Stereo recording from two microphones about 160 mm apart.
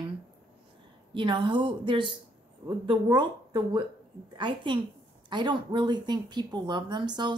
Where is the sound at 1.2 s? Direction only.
30° right (ahead or behind).